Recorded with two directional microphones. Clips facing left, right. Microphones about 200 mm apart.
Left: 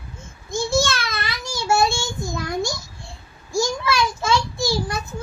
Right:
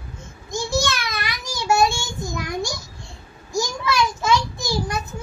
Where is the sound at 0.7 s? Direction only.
15° right (ahead or behind).